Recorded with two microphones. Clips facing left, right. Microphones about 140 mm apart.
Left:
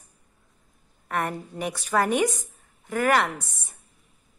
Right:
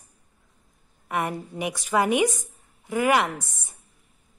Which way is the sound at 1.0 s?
10° right (ahead or behind).